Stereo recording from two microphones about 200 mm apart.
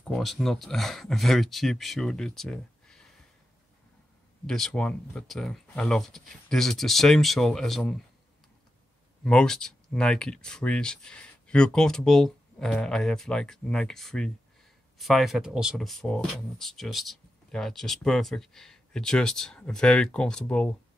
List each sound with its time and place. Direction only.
0.1 s speech: centre (ahead or behind)
4.5 s speech: 5° left (ahead or behind)
9.2 s speech: 5° left (ahead or behind)